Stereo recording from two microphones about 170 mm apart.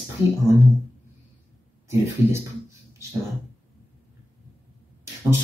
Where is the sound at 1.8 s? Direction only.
15° right (ahead or behind).